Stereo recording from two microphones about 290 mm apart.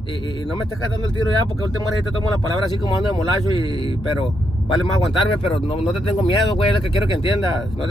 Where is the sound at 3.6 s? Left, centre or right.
Centre.